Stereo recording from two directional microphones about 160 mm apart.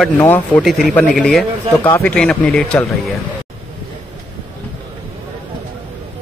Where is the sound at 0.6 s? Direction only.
Centre (ahead or behind).